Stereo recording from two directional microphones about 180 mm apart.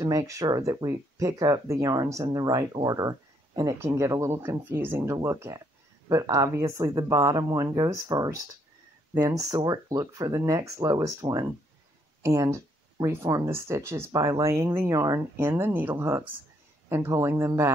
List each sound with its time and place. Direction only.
0.0 s speech: 15° right (ahead or behind)